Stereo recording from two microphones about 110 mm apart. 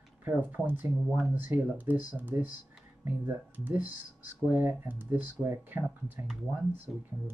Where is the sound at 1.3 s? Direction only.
15° right (ahead or behind).